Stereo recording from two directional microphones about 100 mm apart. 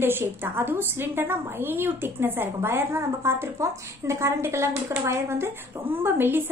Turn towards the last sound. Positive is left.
turn(degrees=-20)  # may be behind; listen again after turning